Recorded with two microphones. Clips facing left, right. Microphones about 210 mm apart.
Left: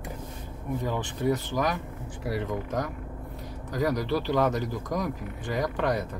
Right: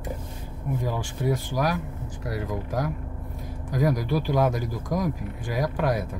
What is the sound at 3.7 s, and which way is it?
Speech, 10° right (ahead or behind).